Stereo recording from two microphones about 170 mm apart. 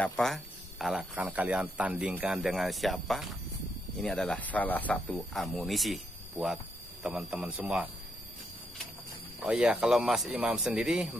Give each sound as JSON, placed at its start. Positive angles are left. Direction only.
{"t": 0.0, "sound": "speech", "side_deg": 5}
{"t": 9.4, "sound": "speech", "side_deg": -5}